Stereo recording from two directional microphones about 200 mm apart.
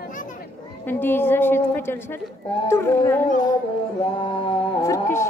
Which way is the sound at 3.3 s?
40° left (ahead or behind).